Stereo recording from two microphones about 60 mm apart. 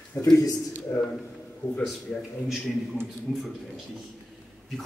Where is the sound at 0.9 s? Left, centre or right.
Left.